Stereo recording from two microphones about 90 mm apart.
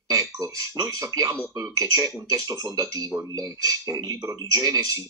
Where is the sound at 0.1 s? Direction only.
40° right (ahead or behind).